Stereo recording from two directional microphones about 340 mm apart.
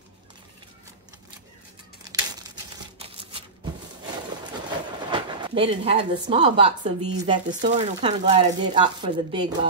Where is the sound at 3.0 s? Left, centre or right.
Centre.